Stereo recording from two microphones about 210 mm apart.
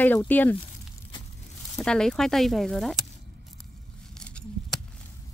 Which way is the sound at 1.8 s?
5° left (ahead or behind).